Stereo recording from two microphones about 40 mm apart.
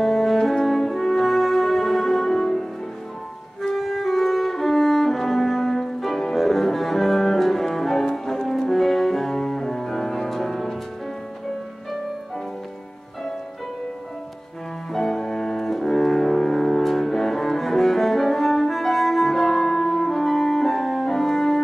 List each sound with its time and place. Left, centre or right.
0.0 s french horn: centre
3.7 s music: centre
14.9 s music: centre